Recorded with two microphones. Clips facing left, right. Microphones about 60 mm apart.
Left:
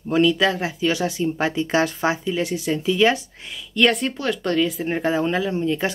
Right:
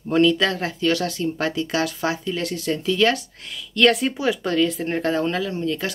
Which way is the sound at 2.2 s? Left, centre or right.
Centre.